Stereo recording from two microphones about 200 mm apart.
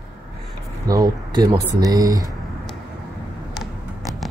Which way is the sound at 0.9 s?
20° right (ahead or behind).